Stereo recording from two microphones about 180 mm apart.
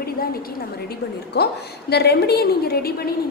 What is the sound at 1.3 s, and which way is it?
A woman's voice, 65° left (ahead or behind).